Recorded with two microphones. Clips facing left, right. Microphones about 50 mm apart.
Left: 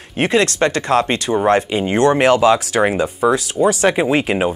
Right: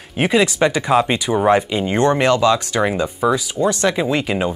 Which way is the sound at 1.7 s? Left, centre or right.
Centre.